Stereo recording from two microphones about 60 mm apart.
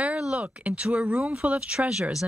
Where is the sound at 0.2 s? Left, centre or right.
Centre.